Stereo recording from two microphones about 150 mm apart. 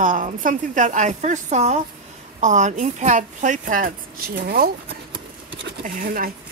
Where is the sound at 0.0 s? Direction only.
60° right (ahead or behind); by 4.6 s 80° right.